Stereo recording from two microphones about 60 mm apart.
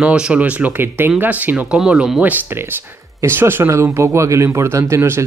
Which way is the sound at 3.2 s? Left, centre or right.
Right.